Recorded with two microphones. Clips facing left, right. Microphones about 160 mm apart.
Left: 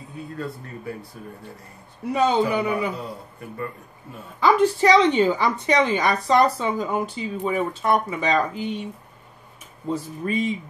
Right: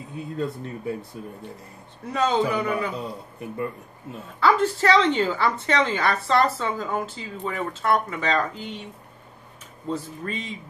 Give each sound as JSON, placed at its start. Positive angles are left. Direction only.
{"t": 0.4, "sound": "speech", "side_deg": -20}
{"t": 2.1, "sound": "a woman's voice", "side_deg": 10}
{"t": 4.4, "sound": "a woman's voice", "side_deg": 15}
{"t": 9.8, "sound": "a woman's voice", "side_deg": 10}